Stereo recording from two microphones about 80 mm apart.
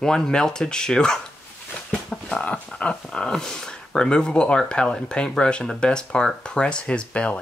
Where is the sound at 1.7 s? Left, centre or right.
Centre.